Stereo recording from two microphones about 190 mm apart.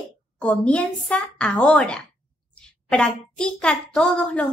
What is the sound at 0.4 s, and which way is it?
A child's voice, 5° left (ahead or behind).